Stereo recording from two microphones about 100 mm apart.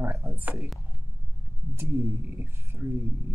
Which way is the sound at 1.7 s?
25° right (ahead or behind).